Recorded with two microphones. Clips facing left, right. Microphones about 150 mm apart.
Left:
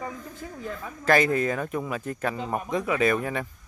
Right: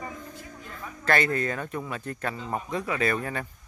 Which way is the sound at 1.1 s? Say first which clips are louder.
Left 4 dB; 10° left (ahead or behind).